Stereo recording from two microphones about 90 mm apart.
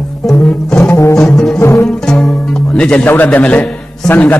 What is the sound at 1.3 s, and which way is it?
Music, 5° left (ahead or behind).